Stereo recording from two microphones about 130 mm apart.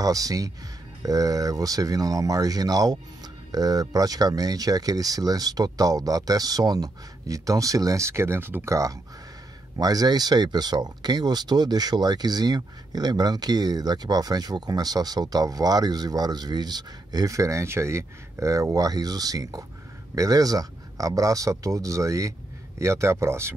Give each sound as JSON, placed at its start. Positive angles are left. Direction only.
{"t": 0.0, "sound": "speech", "side_deg": -25}